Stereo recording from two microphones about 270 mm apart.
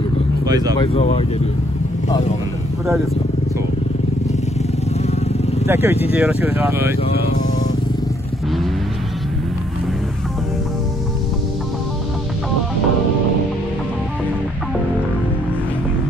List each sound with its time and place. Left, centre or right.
0.5 s speech: centre
0.7 s speech: left
5.7 s speech: centre